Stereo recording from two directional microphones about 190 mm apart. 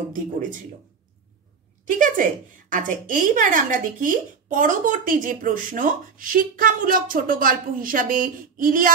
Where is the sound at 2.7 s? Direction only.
45° right (ahead or behind).